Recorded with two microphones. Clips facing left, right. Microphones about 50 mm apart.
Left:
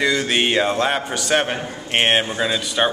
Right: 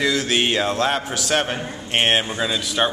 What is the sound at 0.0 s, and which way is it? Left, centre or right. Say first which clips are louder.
A man's voice: left 1 dB; centre.